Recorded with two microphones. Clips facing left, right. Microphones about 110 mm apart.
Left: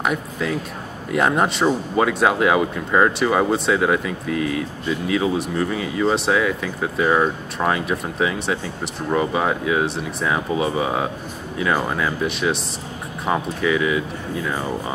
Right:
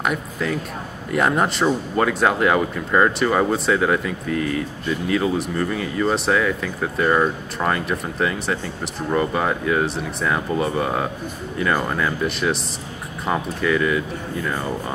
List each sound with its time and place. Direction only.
0.0 s speech: centre (ahead or behind)